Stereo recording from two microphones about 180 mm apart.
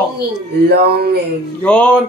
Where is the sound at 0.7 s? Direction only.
60° right (ahead or behind).